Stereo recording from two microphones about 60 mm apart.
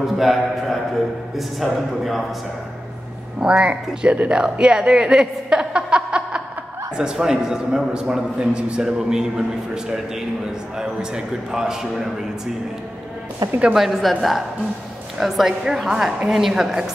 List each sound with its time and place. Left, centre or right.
0.0 s speech: centre
3.3 s speech: centre
10.8 s speech: centre
13.4 s speech: right
13.7 s speech: centre